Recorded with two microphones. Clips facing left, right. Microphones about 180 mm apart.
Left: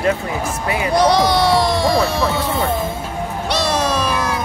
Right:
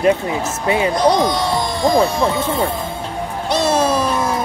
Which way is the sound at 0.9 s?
75° left (ahead or behind).